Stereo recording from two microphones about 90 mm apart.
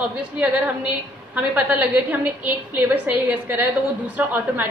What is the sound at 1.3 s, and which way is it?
A woman's voice, 20° right (ahead or behind).